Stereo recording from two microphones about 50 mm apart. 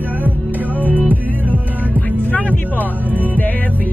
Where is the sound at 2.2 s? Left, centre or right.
Left.